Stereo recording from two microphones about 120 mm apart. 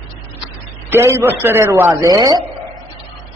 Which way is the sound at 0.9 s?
20° right (ahead or behind).